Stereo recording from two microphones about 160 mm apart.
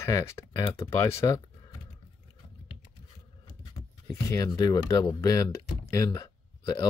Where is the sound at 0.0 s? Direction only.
20° left (ahead or behind).